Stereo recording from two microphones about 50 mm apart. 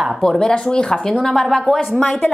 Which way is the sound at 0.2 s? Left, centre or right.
Centre.